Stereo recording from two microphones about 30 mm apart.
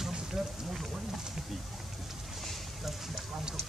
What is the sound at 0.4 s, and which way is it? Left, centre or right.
Speech, centre.